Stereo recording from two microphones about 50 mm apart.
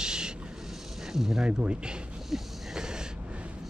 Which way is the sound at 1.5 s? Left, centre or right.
Right.